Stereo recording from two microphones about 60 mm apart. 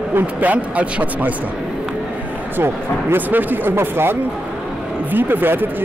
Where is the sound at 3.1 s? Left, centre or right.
Right.